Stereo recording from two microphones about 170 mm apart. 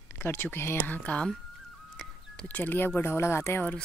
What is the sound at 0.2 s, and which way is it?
Speech, 15° left (ahead or behind).